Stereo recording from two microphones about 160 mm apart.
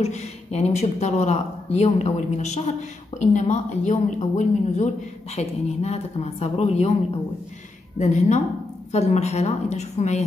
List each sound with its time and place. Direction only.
0.0 s a woman's voice: 45° left (ahead or behind)
8.0 s a woman's voice: 45° left (ahead or behind)